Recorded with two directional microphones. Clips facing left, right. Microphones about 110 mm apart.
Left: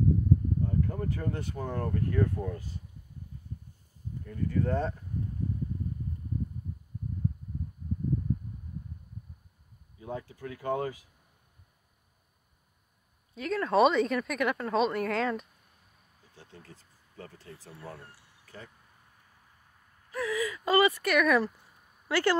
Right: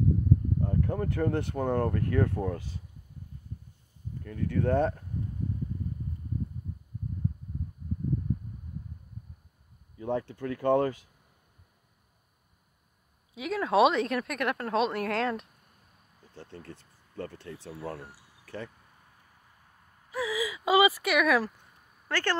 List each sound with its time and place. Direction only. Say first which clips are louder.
0.6 s speech: right 2 dB; 55° right (ahead or behind); by 2.8 s 80° right
4.2 s speech: right 1 dB; 65° right (ahead or behind)
9.9 s speech: right 7 dB; 70° right (ahead or behind)
13.3 s speech: right 1 dB; 5° right (ahead or behind)
16.3 s speech: right 7 dB; 60° right (ahead or behind)
20.1 s a sound: even; 5° right (ahead or behind)
22.0 s speech: left 4 dB; 10° left (ahead or behind)